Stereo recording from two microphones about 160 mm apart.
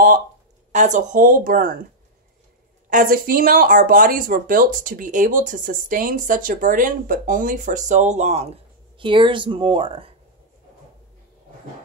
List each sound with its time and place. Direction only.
0.7 s speech: 50° right (ahead or behind)
2.9 s speech: 60° right (ahead or behind); by 10.1 s 35° right (ahead or behind)